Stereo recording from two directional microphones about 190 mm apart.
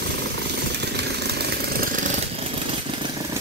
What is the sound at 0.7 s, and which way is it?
Jackhammer, 60° right (ahead or behind).